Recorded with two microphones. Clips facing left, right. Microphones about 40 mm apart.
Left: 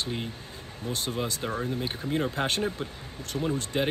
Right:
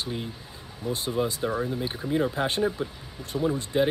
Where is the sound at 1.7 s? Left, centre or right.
Centre.